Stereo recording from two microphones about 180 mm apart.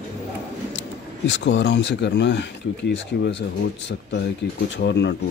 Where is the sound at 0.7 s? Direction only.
80° left.